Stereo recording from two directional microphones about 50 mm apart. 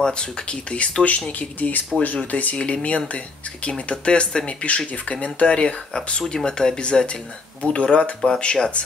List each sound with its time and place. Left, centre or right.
0.0 s speech: centre
1.9 s speech: centre
2.3 s speech: left